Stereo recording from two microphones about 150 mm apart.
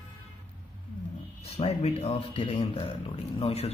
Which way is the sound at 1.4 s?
45° left (ahead or behind).